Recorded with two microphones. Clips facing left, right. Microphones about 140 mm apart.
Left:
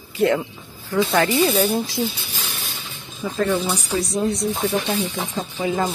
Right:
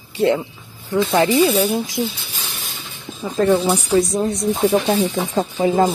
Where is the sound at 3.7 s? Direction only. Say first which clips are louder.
Right 6 dB; 45° right (ahead or behind).